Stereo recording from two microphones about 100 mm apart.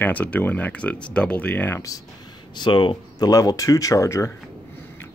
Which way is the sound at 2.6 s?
55° left (ahead or behind).